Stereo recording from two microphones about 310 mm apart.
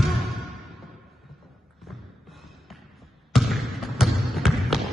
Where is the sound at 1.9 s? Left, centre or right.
Centre.